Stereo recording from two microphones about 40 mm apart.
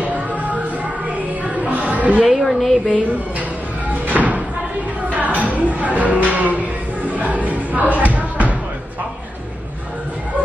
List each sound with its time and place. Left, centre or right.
1.7 s music: right
2.2 s a woman's voice: centre
4.1 s music: right
7.9 s a sound: right